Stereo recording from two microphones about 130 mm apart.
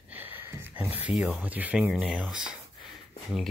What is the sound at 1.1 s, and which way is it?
Speech, 5° right (ahead or behind).